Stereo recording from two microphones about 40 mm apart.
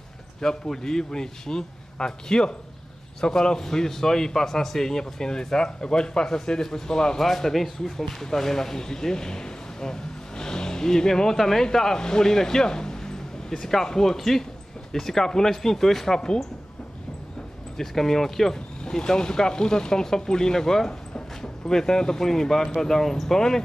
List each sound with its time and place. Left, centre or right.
0.4 s a man's voice: centre
16.2 s speech: centre
17.7 s a man's voice: centre